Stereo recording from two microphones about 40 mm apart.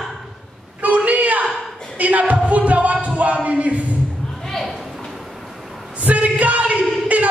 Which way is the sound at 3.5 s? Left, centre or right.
Right.